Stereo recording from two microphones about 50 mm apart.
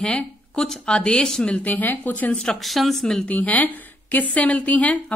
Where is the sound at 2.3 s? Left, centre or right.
Centre.